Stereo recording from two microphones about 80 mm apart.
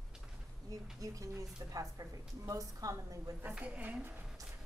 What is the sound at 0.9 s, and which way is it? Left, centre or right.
A woman's voice, right.